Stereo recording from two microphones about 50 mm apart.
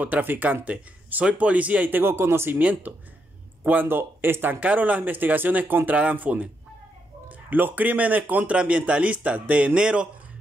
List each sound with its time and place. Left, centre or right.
0.0 s speech: right
2.5 s speech: right
3.8 s speech: right; by 10.0 s centre